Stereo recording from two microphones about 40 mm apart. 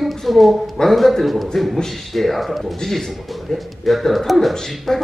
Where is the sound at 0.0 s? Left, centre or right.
Centre.